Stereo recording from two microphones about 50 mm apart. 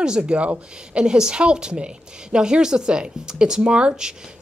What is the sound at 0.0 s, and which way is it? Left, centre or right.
A woman's voice, centre.